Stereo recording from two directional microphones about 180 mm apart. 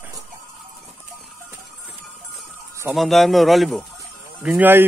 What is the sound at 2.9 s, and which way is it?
A man's voice, centre (ahead or behind).